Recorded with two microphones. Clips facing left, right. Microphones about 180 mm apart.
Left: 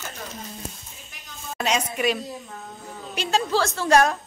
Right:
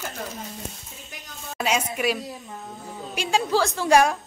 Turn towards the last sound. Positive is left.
turn(degrees=-10)  # may be behind; listen again after turning